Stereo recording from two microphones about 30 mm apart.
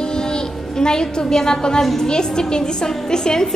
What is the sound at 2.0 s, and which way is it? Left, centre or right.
A woman's voice, left.